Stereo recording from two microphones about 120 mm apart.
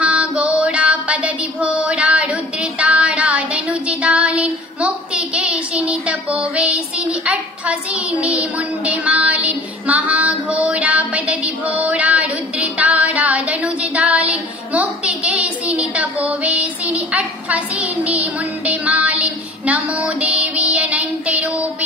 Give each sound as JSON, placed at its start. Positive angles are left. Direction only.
{"t": 0.0, "sound": "music", "side_deg": -10}
{"t": 14.7, "sound": "a sound", "side_deg": -10}
{"t": 16.3, "sound": "child singing", "side_deg": -10}